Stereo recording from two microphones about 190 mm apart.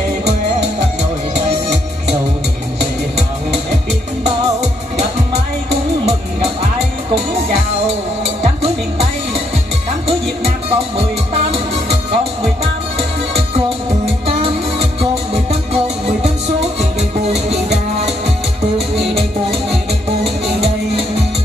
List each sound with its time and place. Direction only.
10.0 s music: 30° right (ahead or behind)
14.2 s music: 30° right (ahead or behind)